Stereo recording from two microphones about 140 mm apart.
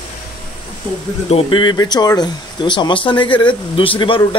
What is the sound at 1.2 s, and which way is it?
Speech, 40° left (ahead or behind).